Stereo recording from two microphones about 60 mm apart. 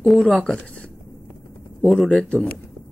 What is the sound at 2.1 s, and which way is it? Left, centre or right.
Speech, centre.